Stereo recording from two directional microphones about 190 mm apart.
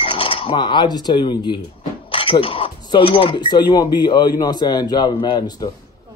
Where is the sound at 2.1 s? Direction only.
30° left (ahead or behind).